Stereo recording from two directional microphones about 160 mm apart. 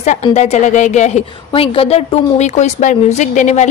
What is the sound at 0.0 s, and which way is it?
A woman's voice, 45° left (ahead or behind).